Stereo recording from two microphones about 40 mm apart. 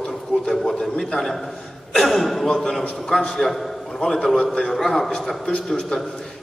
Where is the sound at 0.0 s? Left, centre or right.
Centre.